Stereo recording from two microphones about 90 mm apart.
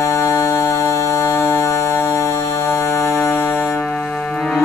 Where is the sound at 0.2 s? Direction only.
35° left (ahead or behind).